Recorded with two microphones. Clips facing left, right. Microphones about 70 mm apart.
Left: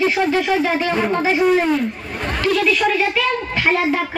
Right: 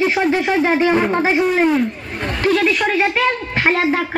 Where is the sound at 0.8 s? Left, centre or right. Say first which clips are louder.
Right 3 dB; right.